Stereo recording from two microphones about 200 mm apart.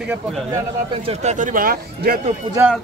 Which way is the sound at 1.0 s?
35° right (ahead or behind).